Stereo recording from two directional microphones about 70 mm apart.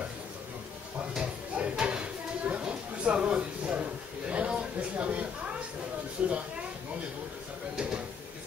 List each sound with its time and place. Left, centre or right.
1.1 s a sound: centre
6.2 s speech: centre
7.7 s drawer open or close: centre